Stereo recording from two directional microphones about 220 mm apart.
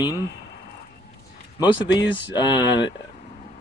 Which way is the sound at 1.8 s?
55° left (ahead or behind).